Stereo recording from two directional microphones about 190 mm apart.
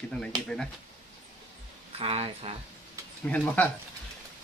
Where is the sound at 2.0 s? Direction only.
30° right (ahead or behind).